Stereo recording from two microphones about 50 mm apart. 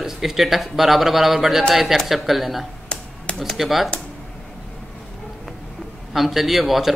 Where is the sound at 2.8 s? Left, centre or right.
Left.